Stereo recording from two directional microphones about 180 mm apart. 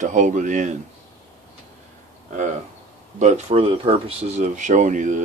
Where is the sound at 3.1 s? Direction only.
40° right (ahead or behind).